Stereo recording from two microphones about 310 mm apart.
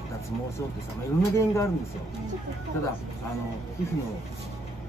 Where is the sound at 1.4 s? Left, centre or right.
Centre.